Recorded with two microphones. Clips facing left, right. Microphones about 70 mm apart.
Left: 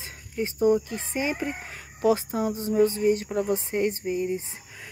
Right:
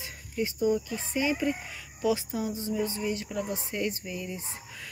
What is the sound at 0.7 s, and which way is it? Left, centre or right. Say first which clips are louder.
Speech: left 2 dB; left.